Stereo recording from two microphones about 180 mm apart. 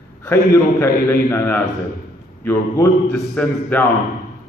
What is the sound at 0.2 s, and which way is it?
A man's voice, 15° left (ahead or behind).